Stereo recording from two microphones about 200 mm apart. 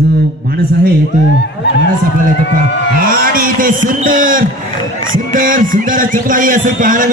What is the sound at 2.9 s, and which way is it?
A man's voice, 45° right (ahead or behind).